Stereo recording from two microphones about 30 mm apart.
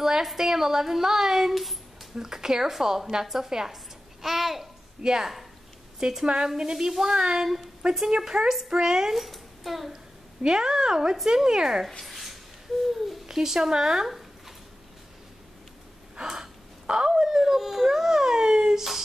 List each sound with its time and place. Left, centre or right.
0.0 s a woman's voice: centre
2.1 s speech: centre
4.2 s speech: centre
5.0 s speech: centre
6.9 s speech: centre
7.2 s speech: right
9.1 s speech: centre
10.4 s speech: right
12.0 s a sound: centre
13.3 s speech: centre
16.2 s speech: right